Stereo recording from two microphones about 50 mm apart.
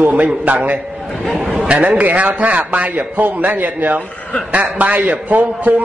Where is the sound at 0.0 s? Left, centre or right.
Right.